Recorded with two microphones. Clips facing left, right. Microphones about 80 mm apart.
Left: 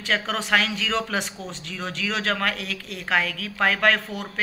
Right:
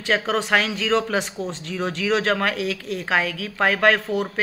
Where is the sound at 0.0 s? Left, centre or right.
Centre.